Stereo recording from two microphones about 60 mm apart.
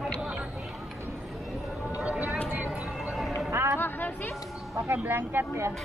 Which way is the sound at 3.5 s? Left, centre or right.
Right.